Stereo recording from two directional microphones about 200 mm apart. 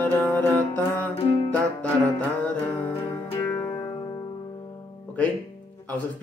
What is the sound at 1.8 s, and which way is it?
Music, 5° left (ahead or behind).